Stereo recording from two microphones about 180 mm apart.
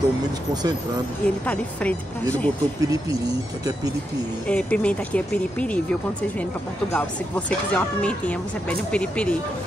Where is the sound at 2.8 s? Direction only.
20° right (ahead or behind).